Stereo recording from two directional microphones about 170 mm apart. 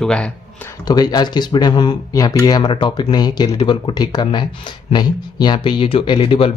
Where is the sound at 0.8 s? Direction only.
25° left (ahead or behind).